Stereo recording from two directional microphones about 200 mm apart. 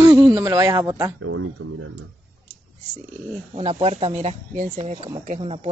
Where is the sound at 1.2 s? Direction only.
90° right.